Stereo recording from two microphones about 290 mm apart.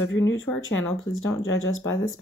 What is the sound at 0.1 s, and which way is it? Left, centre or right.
Speech, left.